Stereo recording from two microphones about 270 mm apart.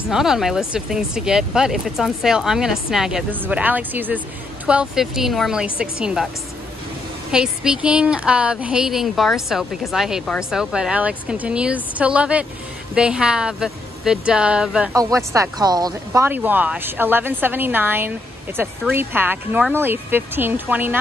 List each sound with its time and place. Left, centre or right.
0.1 s a woman's voice: centre
7.2 s a woman's voice: centre